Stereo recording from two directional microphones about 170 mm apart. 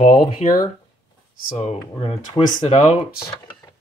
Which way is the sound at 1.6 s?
35° left (ahead or behind).